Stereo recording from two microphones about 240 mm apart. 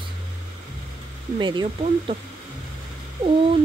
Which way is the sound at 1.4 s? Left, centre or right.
Centre.